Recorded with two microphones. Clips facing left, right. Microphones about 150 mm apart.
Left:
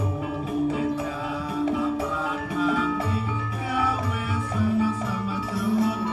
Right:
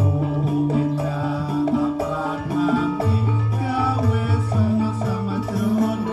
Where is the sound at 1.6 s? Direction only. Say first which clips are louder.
Right 4 dB; 40° right (ahead or behind).